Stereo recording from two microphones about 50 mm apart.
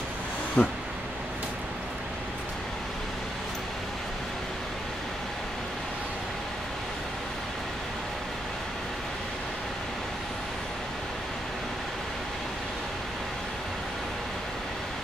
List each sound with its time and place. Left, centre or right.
0.6 s speech: left